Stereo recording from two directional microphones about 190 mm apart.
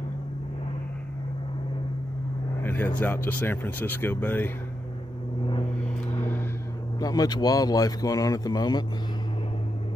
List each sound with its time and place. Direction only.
2.6 s speech: 10° left (ahead or behind)
6.0 s vehicle: 10° left (ahead or behind)
7.0 s speech: 20° left (ahead or behind)